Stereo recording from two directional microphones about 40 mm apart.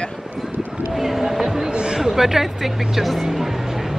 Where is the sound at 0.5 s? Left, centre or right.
Right.